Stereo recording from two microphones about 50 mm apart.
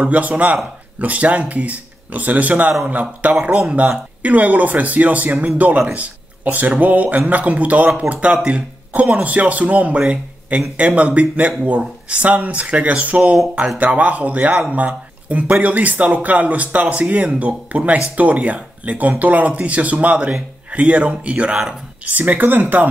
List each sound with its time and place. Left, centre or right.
0.1 s speech: right